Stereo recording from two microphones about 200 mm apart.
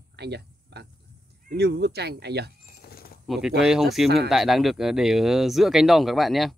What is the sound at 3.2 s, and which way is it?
Speech, centre (ahead or behind).